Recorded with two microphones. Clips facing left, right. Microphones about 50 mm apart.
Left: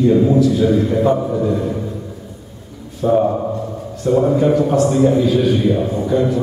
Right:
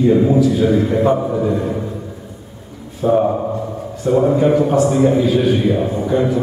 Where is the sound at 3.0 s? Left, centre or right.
Centre.